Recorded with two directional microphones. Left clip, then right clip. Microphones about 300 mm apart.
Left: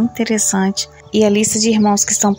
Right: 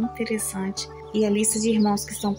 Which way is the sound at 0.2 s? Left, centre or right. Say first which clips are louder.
Left 11 dB; centre.